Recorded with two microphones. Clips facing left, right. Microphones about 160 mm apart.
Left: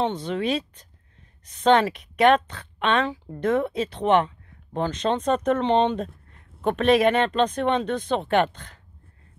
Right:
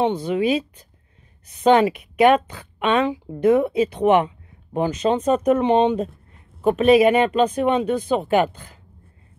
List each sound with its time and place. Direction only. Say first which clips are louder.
0.0 s a woman's voice: right 5 dB; 10° right (ahead or behind)